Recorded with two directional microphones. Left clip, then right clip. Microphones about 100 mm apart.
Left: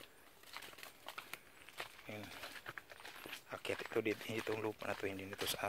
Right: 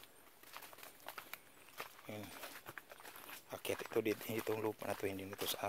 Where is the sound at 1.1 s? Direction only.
5° left (ahead or behind).